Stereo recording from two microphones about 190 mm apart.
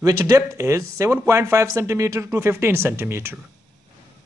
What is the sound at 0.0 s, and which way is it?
Speech, 15° right (ahead or behind).